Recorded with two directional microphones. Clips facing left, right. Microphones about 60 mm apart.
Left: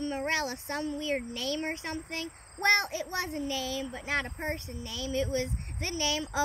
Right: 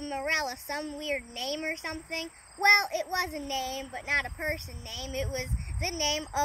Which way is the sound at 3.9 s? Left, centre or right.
Right.